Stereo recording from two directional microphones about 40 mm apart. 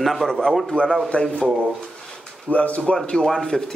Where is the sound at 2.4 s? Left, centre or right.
Left.